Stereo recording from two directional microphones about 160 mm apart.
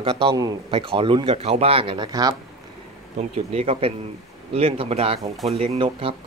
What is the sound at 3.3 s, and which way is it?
Speech, 40° right (ahead or behind).